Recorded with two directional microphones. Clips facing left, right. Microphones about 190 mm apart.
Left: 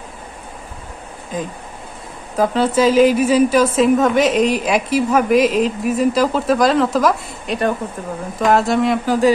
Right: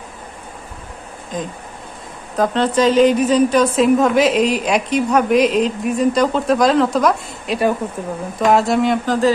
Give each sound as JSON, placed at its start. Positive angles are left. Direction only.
{"t": 1.3, "sound": "a woman's voice", "side_deg": 5}